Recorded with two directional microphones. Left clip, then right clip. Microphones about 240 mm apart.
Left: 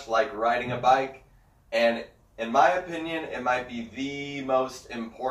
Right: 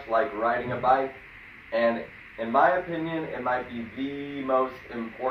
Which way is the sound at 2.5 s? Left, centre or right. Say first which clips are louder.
Even; left.